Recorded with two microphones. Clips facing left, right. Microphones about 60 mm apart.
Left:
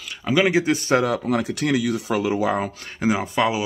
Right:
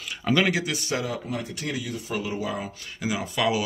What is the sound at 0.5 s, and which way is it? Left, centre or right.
Speech, left.